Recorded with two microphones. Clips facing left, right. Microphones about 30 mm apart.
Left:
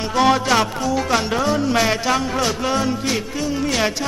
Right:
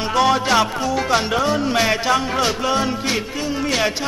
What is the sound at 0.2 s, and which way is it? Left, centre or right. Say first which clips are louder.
Music: even; centre.